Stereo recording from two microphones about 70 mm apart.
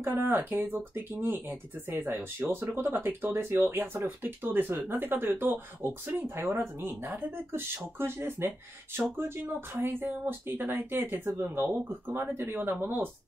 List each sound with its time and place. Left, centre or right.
0.0 s speech: right